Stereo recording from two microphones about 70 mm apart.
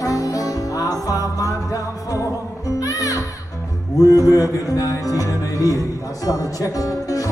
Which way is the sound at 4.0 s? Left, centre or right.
Left.